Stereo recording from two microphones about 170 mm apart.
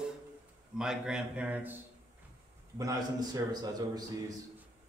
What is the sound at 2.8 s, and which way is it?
A man's voice, 20° right (ahead or behind).